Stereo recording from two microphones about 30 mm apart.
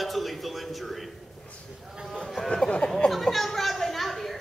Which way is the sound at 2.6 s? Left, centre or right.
Left.